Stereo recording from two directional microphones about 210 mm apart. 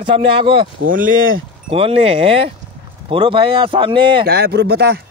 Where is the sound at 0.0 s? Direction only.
25° right (ahead or behind).